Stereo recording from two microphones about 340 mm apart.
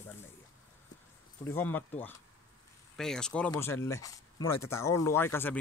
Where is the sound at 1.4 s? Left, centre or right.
Centre.